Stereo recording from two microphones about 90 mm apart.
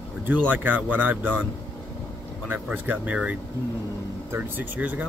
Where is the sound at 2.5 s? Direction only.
20° right (ahead or behind).